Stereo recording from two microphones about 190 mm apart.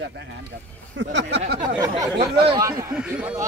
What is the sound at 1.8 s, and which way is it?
Speech, 20° right (ahead or behind).